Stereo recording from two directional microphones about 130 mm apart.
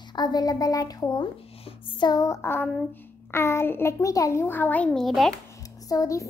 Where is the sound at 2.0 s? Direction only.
30° left (ahead or behind).